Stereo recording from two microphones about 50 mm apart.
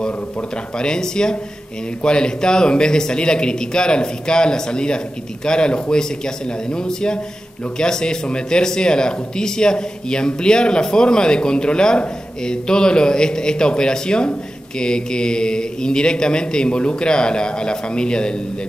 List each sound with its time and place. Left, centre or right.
0.7 s speech: centre